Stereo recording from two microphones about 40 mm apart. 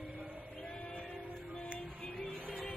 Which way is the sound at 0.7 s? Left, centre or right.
Left.